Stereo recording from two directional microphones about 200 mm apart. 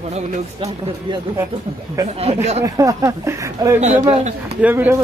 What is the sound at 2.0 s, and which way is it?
A man's voice, 15° right (ahead or behind).